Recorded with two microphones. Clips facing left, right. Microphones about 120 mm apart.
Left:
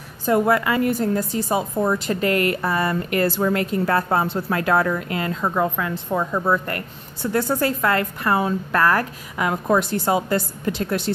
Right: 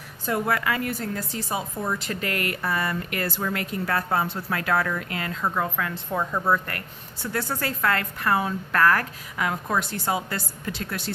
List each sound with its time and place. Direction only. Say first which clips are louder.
0.5 s a woman's voice: left 7 dB; 25° left (ahead or behind)
1.5 s a woman's voice: left 7 dB; 40° left (ahead or behind); by 6.6 s 10° left (ahead or behind)
7.3 s a woman's voice: left 8 dB; 20° left (ahead or behind)